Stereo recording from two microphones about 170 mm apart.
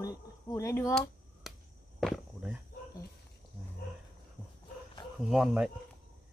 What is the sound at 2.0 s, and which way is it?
Walk, centre (ahead or behind).